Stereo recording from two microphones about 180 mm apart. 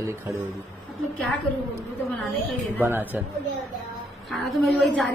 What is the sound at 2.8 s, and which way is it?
Speech, 10° right (ahead or behind).